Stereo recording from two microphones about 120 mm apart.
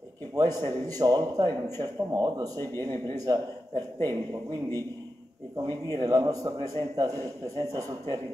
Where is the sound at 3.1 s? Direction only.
30° right (ahead or behind).